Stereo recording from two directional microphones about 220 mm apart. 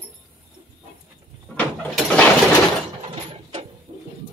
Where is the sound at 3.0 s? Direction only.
25° right (ahead or behind).